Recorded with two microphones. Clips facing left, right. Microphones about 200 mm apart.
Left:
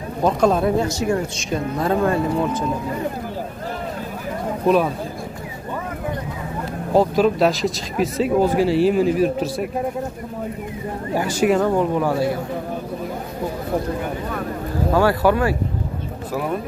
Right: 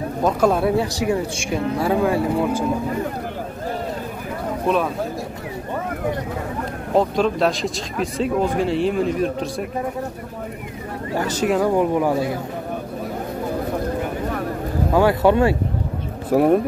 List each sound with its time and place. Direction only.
0.2 s speech: 5° right (ahead or behind)
4.6 s speech: centre (ahead or behind)
6.9 s speech: 5° left (ahead or behind)
11.1 s speech: 10° left (ahead or behind)
11.6 s speech: 15° right (ahead or behind)
15.0 s speech: 20° right (ahead or behind)
16.3 s speech: 55° right (ahead or behind)